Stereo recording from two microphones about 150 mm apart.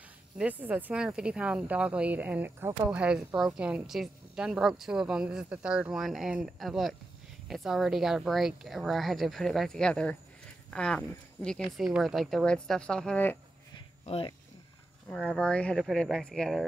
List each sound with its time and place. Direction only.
0.4 s a woman's voice: 10° right (ahead or behind); by 13.4 s 10° left (ahead or behind)
14.0 s speech: 40° left (ahead or behind)
15.1 s a woman's voice: 5° left (ahead or behind)